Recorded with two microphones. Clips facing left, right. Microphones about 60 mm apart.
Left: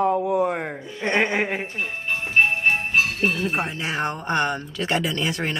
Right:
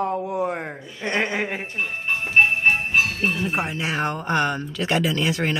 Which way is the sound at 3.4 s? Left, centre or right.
Centre.